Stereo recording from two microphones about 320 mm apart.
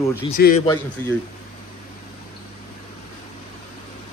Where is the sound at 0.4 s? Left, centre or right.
Left.